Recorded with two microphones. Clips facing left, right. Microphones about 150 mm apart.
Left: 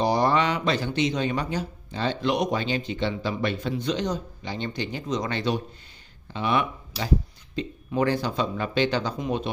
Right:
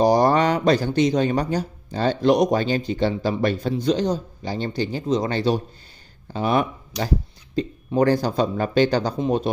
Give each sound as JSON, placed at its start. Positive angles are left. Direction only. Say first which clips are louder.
{"t": 0.0, "sound": "speech", "louder": "right 5 dB", "side_deg": -40}